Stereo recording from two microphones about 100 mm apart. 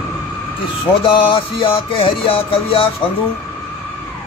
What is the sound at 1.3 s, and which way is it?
Music, 65° left (ahead or behind).